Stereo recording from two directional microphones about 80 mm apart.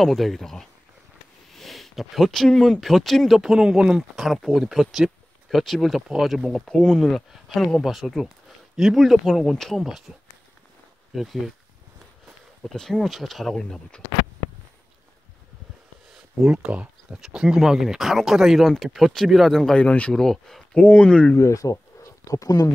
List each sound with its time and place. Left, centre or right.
0.0 s speech: centre
11.1 s speech: centre
12.6 s speech: centre
16.3 s speech: centre
20.7 s speech: centre
21.4 s speech: left